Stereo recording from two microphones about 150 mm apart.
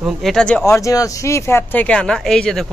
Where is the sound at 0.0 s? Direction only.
Centre (ahead or behind).